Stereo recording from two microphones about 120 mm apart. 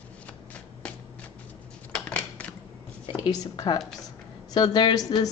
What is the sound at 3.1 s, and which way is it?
Speech, 30° left (ahead or behind).